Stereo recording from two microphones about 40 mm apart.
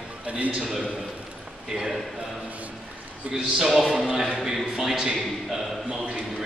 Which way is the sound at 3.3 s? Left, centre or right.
Centre.